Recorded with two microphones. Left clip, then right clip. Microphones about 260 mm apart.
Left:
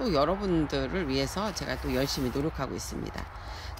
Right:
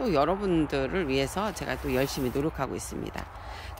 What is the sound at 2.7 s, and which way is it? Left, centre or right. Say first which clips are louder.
Speech: right 1 dB; right.